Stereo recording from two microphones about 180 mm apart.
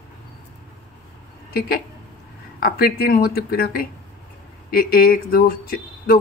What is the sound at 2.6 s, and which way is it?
A man's voice, 55° left (ahead or behind).